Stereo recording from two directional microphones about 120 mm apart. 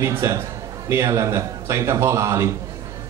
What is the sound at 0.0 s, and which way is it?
Speech, 25° right (ahead or behind).